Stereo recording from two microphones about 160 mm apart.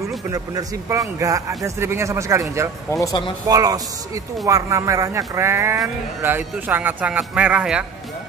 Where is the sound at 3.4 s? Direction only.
20° right (ahead or behind).